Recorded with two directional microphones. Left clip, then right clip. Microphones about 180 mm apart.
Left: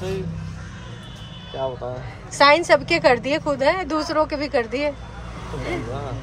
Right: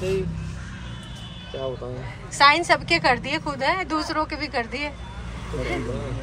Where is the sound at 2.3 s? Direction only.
20° left (ahead or behind).